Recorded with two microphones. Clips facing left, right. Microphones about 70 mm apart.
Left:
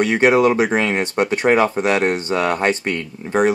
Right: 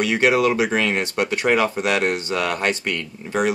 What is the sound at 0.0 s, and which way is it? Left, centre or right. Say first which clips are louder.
Speech: left 4 dB; left.